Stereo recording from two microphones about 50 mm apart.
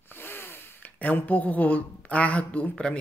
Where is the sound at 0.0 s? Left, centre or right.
Left.